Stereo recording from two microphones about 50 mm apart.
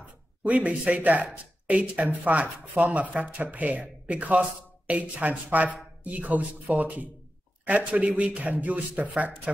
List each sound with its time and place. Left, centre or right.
0.4 s a man's voice: right